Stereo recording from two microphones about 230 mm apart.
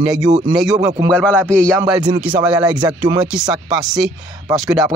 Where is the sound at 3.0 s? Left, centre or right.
Centre.